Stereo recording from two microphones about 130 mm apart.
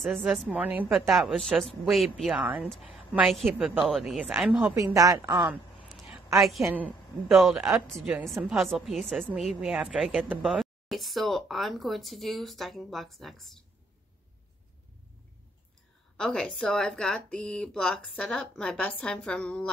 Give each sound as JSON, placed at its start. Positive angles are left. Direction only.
{"t": 0.0, "sound": "speech", "side_deg": 0}
{"t": 0.5, "sound": "a woman's voice", "side_deg": -15}
{"t": 0.8, "sound": "speech", "side_deg": 0}
{"t": 2.4, "sound": "a woman's voice", "side_deg": -10}
{"t": 2.7, "sound": "speech", "side_deg": 0}
{"t": 4.7, "sound": "a woman's voice", "side_deg": -25}
{"t": 6.6, "sound": "a woman's voice", "side_deg": -15}
{"t": 7.2, "sound": "speech", "side_deg": 0}
{"t": 16.2, "sound": "speech", "side_deg": 5}